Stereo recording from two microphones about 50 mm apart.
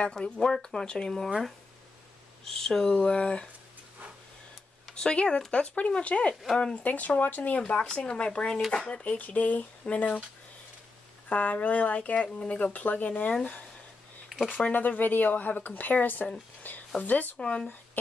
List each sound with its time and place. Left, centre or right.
0.0 s speech: centre
2.4 s speech: centre
4.9 s speech: centre
11.2 s speech: left
14.7 s speech: left
16.6 s a sound: left
17.0 s speech: left
17.4 s speech: left